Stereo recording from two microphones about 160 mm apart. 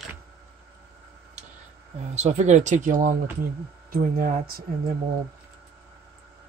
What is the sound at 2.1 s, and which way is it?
Speech, 45° right (ahead or behind).